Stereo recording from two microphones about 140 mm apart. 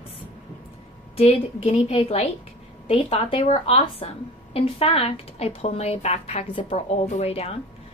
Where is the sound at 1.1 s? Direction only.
45° left (ahead or behind).